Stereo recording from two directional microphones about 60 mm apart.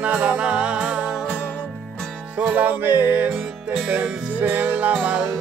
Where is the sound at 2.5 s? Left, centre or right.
Right.